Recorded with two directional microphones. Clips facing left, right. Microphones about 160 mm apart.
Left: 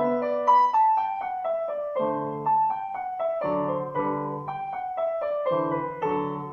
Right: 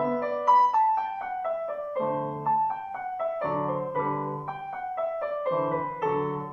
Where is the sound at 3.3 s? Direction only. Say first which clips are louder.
Left 3 dB; 15° left (ahead or behind).